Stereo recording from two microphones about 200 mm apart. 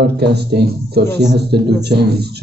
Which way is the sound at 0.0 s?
55° right (ahead or behind).